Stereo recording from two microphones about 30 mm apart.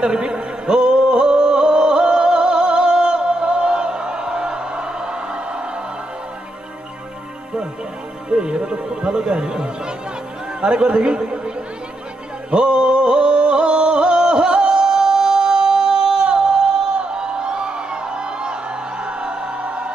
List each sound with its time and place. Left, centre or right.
0.0 s a sound: right
8.3 s speech: right
12.4 s music: right